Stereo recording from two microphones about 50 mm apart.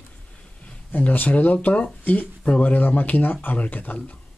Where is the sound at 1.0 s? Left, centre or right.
Left.